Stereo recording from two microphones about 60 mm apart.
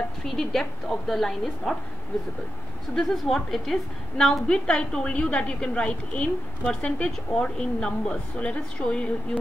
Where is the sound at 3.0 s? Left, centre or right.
Centre.